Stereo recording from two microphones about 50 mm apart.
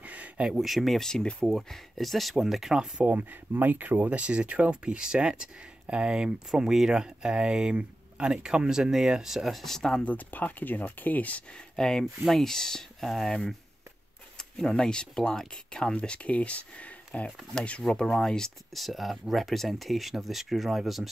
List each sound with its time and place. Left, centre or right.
0.0 s a sound: right
0.6 s speech: centre
3.1 s speech: right; by 10.0 s centre
10.0 s speech: left
11.5 s speech: centre
14.6 s speech: centre
18.0 s speech: centre